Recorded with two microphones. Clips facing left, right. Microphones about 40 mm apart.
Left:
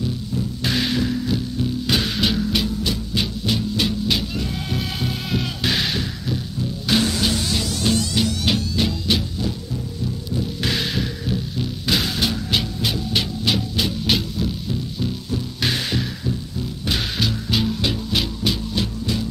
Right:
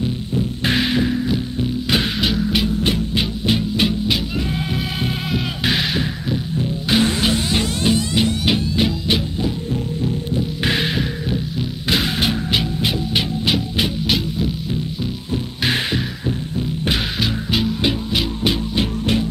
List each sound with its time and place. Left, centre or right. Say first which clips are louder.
0.7 s music: right 3 dB; right
16.9 s music: even; centre
18.4 s music: right 3 dB; right